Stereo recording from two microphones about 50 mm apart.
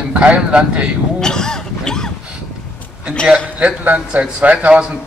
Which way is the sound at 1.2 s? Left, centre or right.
Centre.